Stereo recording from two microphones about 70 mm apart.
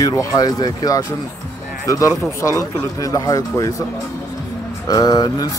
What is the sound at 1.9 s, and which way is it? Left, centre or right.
Speech, left.